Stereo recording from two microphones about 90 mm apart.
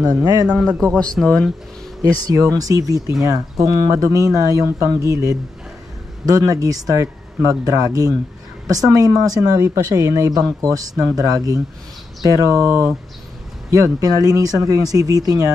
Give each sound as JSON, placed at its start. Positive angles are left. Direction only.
{"t": 0.0, "sound": "speech", "side_deg": -45}
{"t": 0.9, "sound": "speech", "side_deg": 10}
{"t": 2.0, "sound": "speech", "side_deg": -40}